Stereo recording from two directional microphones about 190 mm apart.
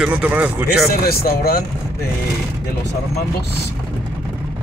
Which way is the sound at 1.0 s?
50° left (ahead or behind).